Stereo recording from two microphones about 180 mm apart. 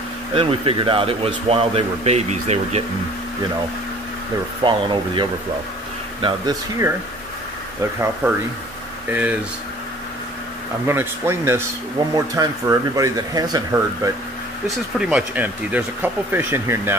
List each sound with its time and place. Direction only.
0.3 s speech: 30° right (ahead or behind)
4.6 s speech: 25° right (ahead or behind)
6.2 s speech: 25° right (ahead or behind)
8.2 s speech: 10° right (ahead or behind)
10.9 s speech: 15° right (ahead or behind)
15.0 s speech: 5° right (ahead or behind)